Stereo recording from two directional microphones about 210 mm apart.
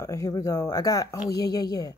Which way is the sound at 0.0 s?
15° left (ahead or behind).